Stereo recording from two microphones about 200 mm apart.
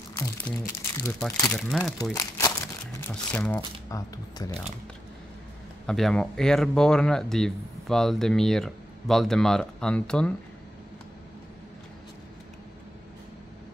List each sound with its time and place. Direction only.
0.1 s music: 10° left (ahead or behind)
1.0 s speech: 15° left (ahead or behind)
1.6 s speech: centre (ahead or behind)
2.1 s crumpling: 15° left (ahead or behind)
3.9 s speech: 15° left (ahead or behind)
5.9 s speech: centre (ahead or behind)